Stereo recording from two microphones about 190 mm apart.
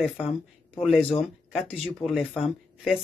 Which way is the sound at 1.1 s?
30° left (ahead or behind).